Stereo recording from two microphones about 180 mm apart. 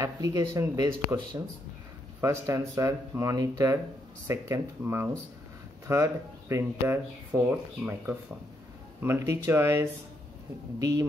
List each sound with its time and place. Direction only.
0.0 s speech: 15° right (ahead or behind)